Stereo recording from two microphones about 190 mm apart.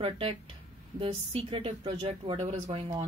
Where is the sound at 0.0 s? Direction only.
30° right (ahead or behind).